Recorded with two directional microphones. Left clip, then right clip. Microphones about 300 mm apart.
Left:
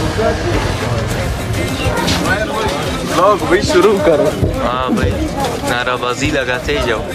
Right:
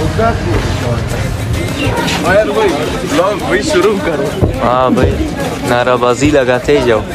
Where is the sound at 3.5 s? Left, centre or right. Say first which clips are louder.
Even; left.